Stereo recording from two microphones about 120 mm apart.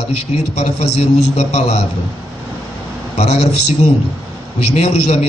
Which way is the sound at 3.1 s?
60° left (ahead or behind).